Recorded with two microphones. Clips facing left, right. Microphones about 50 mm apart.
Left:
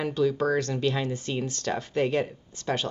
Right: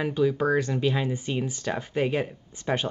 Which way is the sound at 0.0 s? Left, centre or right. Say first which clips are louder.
Right 1 dB; centre.